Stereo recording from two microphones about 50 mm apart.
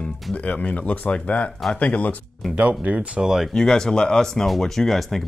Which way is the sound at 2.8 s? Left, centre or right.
Right.